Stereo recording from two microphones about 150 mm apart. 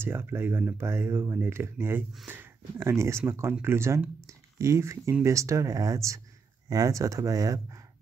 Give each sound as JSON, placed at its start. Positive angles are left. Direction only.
{"t": 0.0, "sound": "speech", "side_deg": -15}